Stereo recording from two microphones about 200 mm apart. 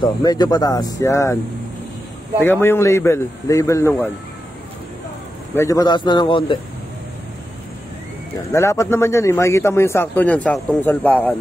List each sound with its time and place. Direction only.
0.0 s speech: 20° left (ahead or behind)
2.4 s a man's voice: 10° left (ahead or behind)
5.5 s speech: 15° left (ahead or behind)
8.5 s a man's voice: 15° left (ahead or behind)